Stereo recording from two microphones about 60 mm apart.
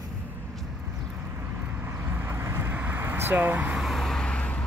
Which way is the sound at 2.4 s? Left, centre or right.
Right.